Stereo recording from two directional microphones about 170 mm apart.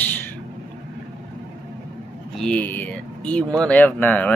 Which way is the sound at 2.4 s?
10° left (ahead or behind).